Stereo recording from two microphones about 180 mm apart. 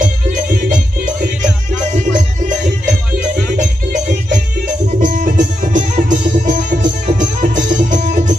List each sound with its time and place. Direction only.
3.3 s music: 45° right (ahead or behind)